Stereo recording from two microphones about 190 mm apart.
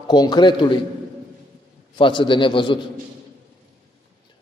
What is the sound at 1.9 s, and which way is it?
Speech, 25° left (ahead or behind).